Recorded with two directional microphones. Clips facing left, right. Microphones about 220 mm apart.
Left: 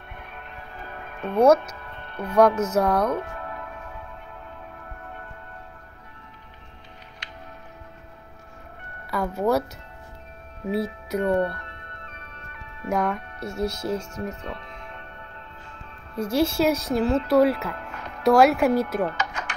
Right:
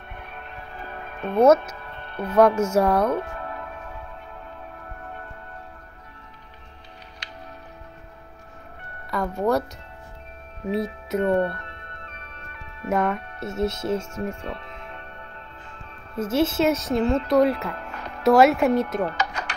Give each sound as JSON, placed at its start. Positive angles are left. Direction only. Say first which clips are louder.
{"t": 1.2, "sound": "a woman's voice", "louder": "right 1 dB", "side_deg": 0}
{"t": 2.0, "sound": "music", "louder": "right 2 dB", "side_deg": -30}
{"t": 2.3, "sound": "speech", "louder": "right 1 dB", "side_deg": -10}
{"t": 3.2, "sound": "music", "louder": "right 2 dB", "side_deg": -30}
{"t": 9.1, "sound": "a woman's voice", "louder": "even", "side_deg": 0}
{"t": 10.7, "sound": "a woman's voice", "louder": "right 1 dB", "side_deg": 0}
{"t": 11.2, "sound": "speech", "louder": "right 1 dB", "side_deg": -25}
{"t": 12.1, "sound": "music", "louder": "right 1 dB", "side_deg": -30}
{"t": 12.9, "sound": "a woman's voice", "louder": "right 2 dB", "side_deg": -5}
{"t": 13.4, "sound": "speech", "louder": "right 2 dB", "side_deg": -25}
{"t": 16.2, "sound": "a woman's voice", "louder": "even", "side_deg": -5}
{"t": 17.7, "sound": "music", "louder": "right 1 dB", "side_deg": -35}
{"t": 18.2, "sound": "a woman's voice", "louder": "right 1 dB", "side_deg": 0}
{"t": 19.0, "sound": "music", "louder": "right 1 dB", "side_deg": -35}